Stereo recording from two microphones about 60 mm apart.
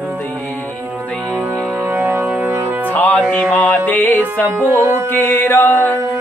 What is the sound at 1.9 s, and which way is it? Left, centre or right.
Music, right.